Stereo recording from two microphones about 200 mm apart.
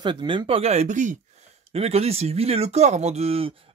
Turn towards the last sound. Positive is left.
turn(degrees=-30)  # may be behind; listen again after turning